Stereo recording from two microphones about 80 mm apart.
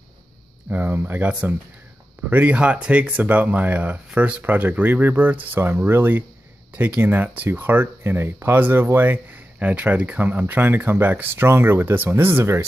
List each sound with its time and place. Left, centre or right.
0.7 s speech: right